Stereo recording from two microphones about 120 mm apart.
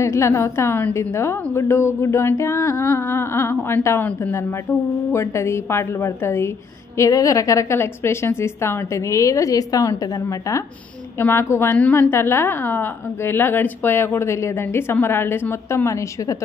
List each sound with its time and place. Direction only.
0.0 s a woman's voice: 25° left (ahead or behind)
11.1 s a woman's voice: 20° left (ahead or behind)